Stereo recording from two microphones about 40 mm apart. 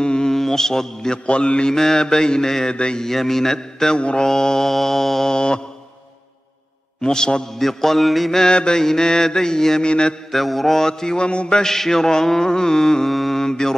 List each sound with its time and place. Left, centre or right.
0.0 s mantra: centre
1.2 s mantra: left
3.1 s mantra: centre; by 4.3 s left
4.3 s mantra: centre
5.3 s mantra: left
7.0 s mantra: centre
7.5 s mantra: centre
8.4 s mantra: left
10.3 s mantra: centre; by 11.6 s left
11.6 s mantra: centre